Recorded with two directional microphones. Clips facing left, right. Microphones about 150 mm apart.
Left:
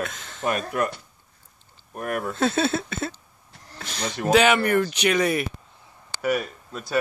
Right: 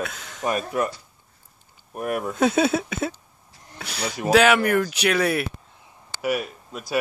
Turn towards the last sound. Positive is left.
turn(degrees=-10)  # may be behind; listen again after turning